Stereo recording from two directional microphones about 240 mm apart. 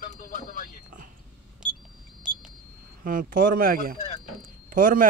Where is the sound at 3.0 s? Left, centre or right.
Right.